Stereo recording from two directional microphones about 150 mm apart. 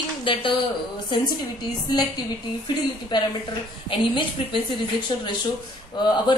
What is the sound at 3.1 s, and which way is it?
Speech, 30° left (ahead or behind).